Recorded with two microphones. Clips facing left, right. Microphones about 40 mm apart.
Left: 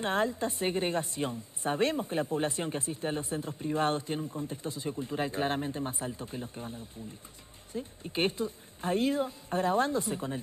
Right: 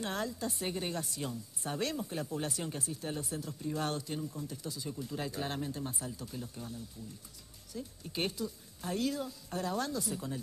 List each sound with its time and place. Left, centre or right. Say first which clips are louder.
0.0 s a woman's voice: left 7 dB; left